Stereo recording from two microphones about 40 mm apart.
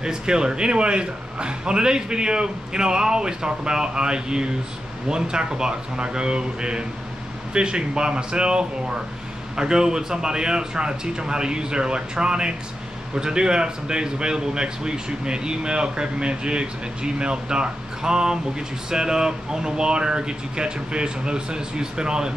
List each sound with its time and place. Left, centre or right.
0.0 s a man's voice: centre